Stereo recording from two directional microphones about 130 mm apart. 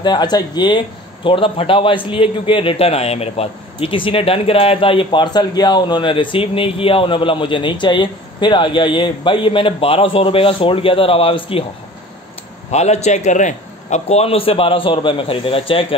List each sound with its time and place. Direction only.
0.0 s speech: 35° left (ahead or behind)
12.7 s speech: 60° left (ahead or behind)